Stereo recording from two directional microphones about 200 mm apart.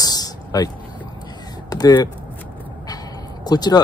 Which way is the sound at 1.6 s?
20° left (ahead or behind).